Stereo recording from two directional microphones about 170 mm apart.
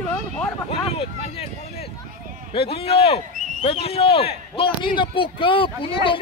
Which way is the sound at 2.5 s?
35° left (ahead or behind).